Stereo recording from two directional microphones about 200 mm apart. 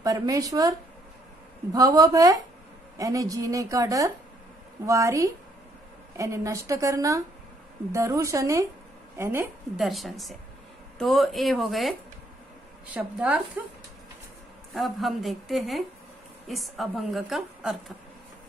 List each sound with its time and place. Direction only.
0.0 s a woman's voice: 15° right (ahead or behind)
9.8 s a woman's voice: centre (ahead or behind)
12.9 s a woman's voice: 5° right (ahead or behind)
14.7 s a woman's voice: centre (ahead or behind)